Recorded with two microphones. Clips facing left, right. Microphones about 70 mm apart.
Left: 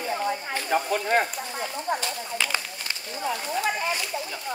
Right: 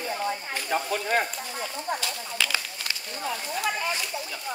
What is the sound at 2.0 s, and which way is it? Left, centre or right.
Speech, left.